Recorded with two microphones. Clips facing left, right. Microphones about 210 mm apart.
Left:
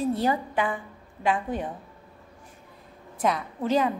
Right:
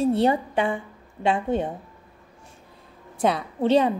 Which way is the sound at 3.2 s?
30° right (ahead or behind).